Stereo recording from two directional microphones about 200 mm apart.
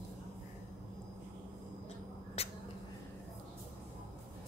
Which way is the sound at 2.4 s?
30° left (ahead or behind).